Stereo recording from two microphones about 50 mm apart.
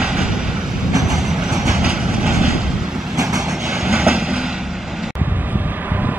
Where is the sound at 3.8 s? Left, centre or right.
Centre.